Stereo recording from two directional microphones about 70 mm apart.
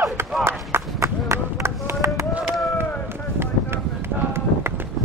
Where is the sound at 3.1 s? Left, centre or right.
Right.